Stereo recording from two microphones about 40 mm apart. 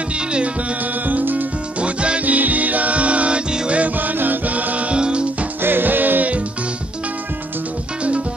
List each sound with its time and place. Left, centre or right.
1.0 s music: right
1.8 s music: right
2.2 s music: right
3.9 s music: right
4.9 s music: right
5.6 s music: right